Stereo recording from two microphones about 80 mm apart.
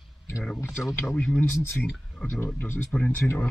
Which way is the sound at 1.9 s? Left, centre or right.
Centre.